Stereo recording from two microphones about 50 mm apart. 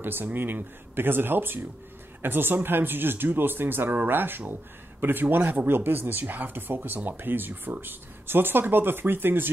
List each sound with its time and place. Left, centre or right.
0.0 s a man's voice: right